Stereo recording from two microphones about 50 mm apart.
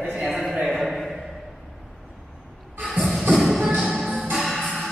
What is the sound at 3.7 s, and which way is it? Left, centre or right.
Music, centre.